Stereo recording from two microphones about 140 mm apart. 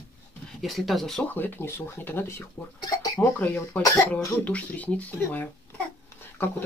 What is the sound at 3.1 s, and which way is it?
Speech, 10° left (ahead or behind).